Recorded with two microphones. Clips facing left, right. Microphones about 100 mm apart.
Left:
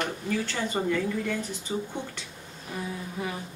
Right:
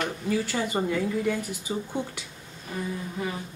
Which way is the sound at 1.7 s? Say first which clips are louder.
Even; 25° right (ahead or behind).